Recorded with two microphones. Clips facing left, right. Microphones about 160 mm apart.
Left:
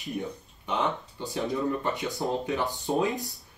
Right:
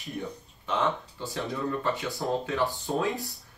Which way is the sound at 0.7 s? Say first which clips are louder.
Right 1 dB; 15° left (ahead or behind).